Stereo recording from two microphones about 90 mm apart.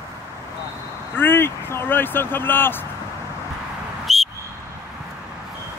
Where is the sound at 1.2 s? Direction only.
25° left (ahead or behind).